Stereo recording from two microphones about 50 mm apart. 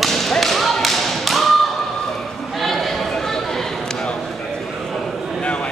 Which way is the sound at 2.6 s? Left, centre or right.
Centre.